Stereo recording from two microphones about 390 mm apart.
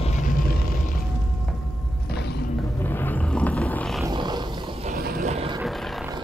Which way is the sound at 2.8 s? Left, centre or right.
Centre.